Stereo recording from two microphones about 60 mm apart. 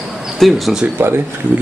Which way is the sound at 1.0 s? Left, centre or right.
Right.